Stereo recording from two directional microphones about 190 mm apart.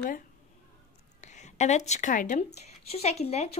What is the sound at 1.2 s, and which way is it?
Speech, 40° left (ahead or behind).